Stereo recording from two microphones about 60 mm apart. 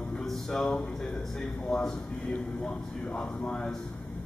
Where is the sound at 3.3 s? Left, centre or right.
Centre.